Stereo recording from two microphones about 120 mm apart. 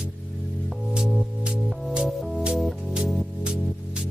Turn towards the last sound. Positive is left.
turn(degrees=-10)  # may be behind; listen again after turning